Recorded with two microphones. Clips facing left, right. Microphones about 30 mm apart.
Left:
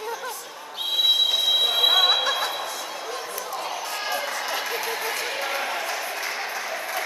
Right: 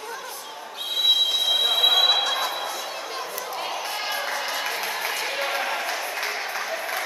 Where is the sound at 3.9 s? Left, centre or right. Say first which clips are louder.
Left 1 dB; centre.